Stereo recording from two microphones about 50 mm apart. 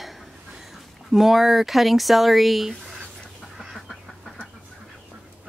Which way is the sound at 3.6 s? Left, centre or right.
Centre.